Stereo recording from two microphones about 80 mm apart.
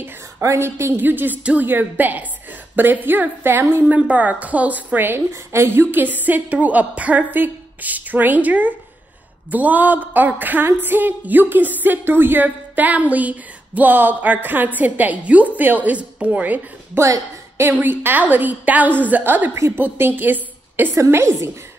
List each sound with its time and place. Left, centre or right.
0.0 s a sound: right
1.0 s a woman's voice: right
17.0 s a woman's voice: right
17.6 s a woman's voice: right
20.9 s a woman's voice: right